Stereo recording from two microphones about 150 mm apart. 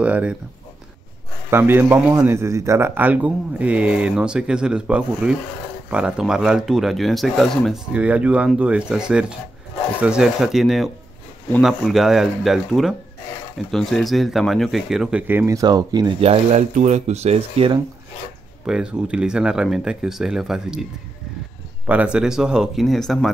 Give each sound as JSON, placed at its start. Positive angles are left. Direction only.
{"t": 0.0, "sound": "a man's voice", "side_deg": -10}
{"t": 1.5, "sound": "a man's voice", "side_deg": -15}
{"t": 16.2, "sound": "speech", "side_deg": -45}
{"t": 18.7, "sound": "speech", "side_deg": -5}
{"t": 21.8, "sound": "speech", "side_deg": -10}